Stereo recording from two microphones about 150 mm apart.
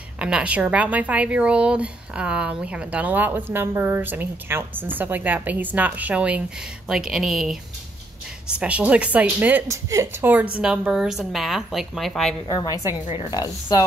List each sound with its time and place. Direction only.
0.2 s a woman's voice: 10° right (ahead or behind)
8.5 s speech: 10° right (ahead or behind)
12.4 s a woman's voice: 30° left (ahead or behind)